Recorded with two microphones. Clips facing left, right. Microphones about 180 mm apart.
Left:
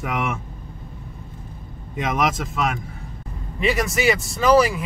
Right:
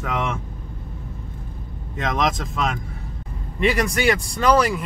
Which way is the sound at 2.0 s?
10° left (ahead or behind).